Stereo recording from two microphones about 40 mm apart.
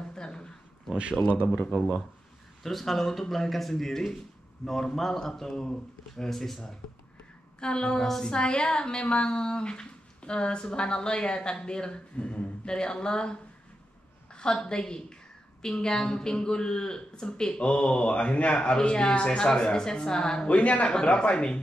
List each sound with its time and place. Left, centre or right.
0.1 s a sound: centre
1.2 s speech: centre
2.6 s speech: centre
7.6 s a woman's voice: left
8.0 s speech: centre
8.3 s a woman's voice: left
20.4 s a man's voice: left